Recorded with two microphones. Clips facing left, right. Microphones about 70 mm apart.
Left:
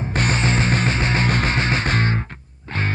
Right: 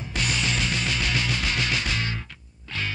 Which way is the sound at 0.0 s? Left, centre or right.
Left.